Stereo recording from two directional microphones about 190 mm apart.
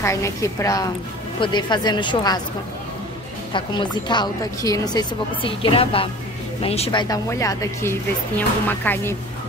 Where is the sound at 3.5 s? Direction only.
25° left (ahead or behind).